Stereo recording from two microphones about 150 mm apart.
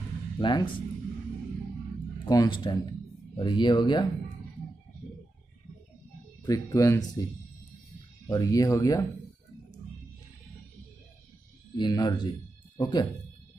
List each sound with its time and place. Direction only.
0.4 s speech: 30° left (ahead or behind)
2.2 s speech: 25° left (ahead or behind)
6.4 s speech: 25° left (ahead or behind)
8.3 s speech: 25° left (ahead or behind)
11.7 s speech: 25° left (ahead or behind)